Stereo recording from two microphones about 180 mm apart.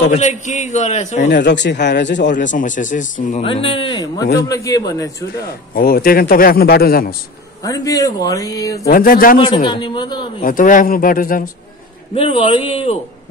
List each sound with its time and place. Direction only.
0.1 s a man's voice: 45° left (ahead or behind)
1.3 s speech: 75° left (ahead or behind)
2.3 s a man's voice: 45° left (ahead or behind)
3.4 s speech: 30° left (ahead or behind)
5.8 s a man's voice: 55° left (ahead or behind)
7.6 s speech: 20° left (ahead or behind)
8.8 s a man's voice: 50° left (ahead or behind)
9.4 s speech: 30° left (ahead or behind)
10.4 s a man's voice: 50° left (ahead or behind)
12.1 s a man's voice: 30° left (ahead or behind)